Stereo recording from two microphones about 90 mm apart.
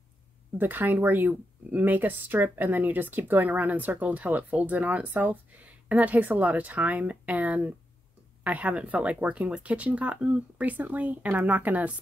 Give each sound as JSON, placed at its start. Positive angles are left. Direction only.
{"t": 0.6, "sound": "speech", "side_deg": -20}